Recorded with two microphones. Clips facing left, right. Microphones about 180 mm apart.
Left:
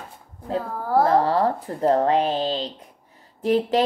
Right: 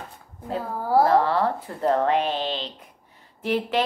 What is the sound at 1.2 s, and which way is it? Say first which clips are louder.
Speech: left 2 dB; 40° left (ahead or behind).